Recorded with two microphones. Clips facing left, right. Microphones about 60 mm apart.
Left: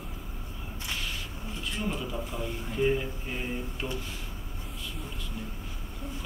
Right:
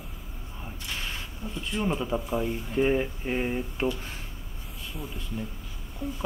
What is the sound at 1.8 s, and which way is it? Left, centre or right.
Speech, right.